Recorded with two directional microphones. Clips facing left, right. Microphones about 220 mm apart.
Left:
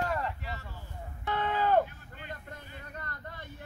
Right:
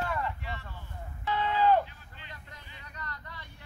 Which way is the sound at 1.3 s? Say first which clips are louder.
Right 2 dB; 50° left (ahead or behind).